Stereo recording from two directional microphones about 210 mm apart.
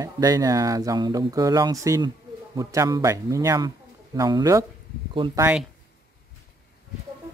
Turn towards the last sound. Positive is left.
turn(degrees=-5)  # may be behind; listen again after turning